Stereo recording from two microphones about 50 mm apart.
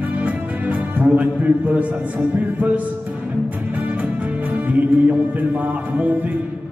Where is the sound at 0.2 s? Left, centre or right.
Right.